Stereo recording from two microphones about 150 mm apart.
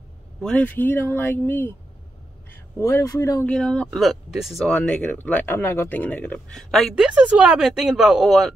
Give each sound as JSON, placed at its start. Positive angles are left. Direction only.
{"t": 0.4, "sound": "speech", "side_deg": 10}
{"t": 3.4, "sound": "speech", "side_deg": 5}